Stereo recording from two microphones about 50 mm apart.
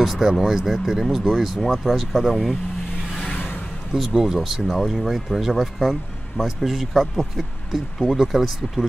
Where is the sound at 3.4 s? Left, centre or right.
Left.